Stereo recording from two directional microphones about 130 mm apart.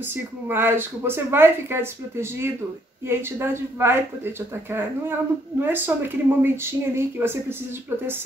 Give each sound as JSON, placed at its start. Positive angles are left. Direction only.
{"t": 0.1, "sound": "speech", "side_deg": -15}
{"t": 5.6, "sound": "speech", "side_deg": -15}